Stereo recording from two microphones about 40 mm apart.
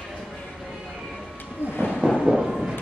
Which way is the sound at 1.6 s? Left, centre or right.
Left.